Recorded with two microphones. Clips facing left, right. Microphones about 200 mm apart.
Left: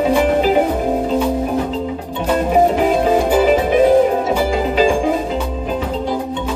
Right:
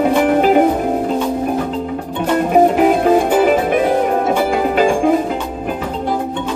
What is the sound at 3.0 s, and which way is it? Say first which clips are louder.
Music: right 1 dB; 55° right (ahead or behind).